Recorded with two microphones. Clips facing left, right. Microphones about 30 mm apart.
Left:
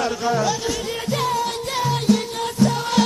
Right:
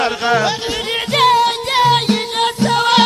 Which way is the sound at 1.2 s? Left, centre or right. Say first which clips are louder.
Right 13 dB; right.